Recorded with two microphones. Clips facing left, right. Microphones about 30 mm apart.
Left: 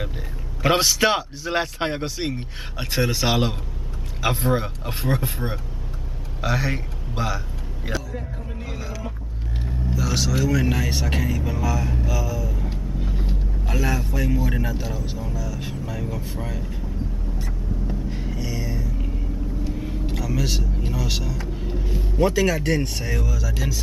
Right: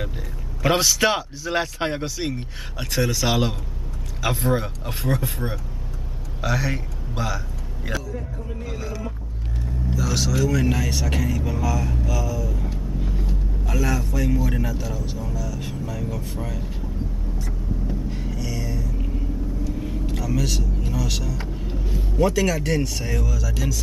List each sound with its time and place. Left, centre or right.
0.6 s a man's voice: centre
8.5 s a sound: centre
9.8 s a man's voice: centre
13.2 s vehicle: left
13.7 s a man's voice: centre
17.5 s vehicle: centre
20.2 s vehicle: centre
20.4 s a man's voice: centre